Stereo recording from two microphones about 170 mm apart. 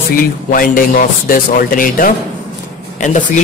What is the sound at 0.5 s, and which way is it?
A man's voice, 55° left (ahead or behind).